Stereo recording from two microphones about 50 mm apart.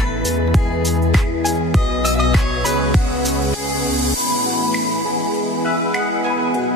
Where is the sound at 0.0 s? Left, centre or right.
Centre.